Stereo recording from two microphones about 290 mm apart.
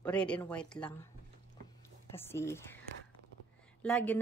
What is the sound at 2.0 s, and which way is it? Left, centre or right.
Speech, centre.